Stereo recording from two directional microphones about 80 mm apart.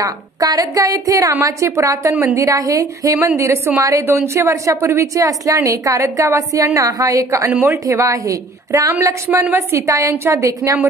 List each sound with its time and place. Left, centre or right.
0.0 s a woman's voice: right